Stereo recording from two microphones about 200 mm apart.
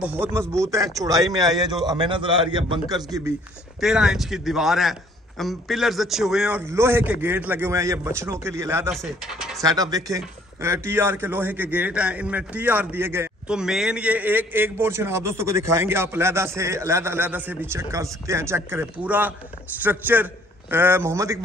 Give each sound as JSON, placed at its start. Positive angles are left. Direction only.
{"t": 0.0, "sound": "a man's voice", "side_deg": -10}
{"t": 3.8, "sound": "speech", "side_deg": 0}
{"t": 9.6, "sound": "speech", "side_deg": -20}